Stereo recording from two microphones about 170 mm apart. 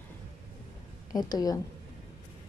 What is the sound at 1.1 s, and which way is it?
Speech, 25° left (ahead or behind).